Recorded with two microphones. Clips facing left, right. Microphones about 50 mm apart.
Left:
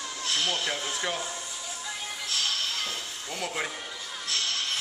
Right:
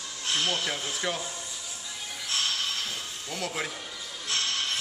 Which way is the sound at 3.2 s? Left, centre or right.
Centre.